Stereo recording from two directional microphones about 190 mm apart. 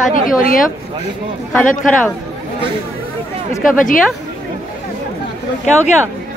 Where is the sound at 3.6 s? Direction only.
45° left (ahead or behind).